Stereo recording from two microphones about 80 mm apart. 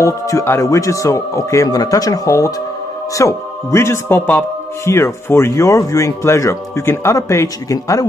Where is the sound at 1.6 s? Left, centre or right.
Left.